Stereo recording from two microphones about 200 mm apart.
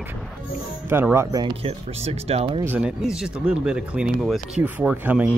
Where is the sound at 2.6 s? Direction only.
10° right (ahead or behind).